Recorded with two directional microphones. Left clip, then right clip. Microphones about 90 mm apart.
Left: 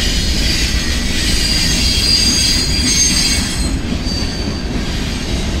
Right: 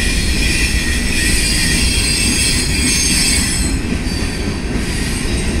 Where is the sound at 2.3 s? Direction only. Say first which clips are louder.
Left 2 dB; 40° left (ahead or behind).